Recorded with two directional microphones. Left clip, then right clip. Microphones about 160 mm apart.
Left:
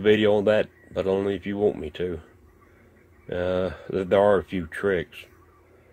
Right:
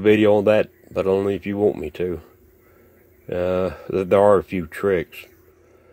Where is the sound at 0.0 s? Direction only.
35° right (ahead or behind).